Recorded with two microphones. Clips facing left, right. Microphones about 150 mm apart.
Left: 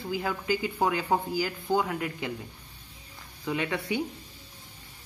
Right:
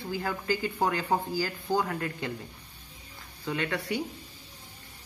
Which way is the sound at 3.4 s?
15° left (ahead or behind).